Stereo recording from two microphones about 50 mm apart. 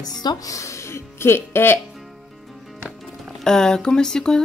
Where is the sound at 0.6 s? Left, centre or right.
Left.